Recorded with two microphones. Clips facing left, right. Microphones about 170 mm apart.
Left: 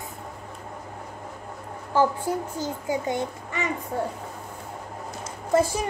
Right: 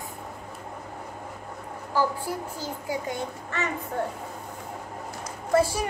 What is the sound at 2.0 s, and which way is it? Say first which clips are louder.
A child's voice: left 4 dB; 20° left (ahead or behind).